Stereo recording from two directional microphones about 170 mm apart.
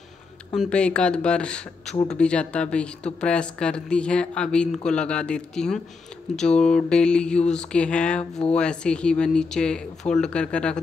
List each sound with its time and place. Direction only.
0.6 s speech: 5° left (ahead or behind)
8.2 s a sound: 35° left (ahead or behind)
8.5 s speech: 5° left (ahead or behind)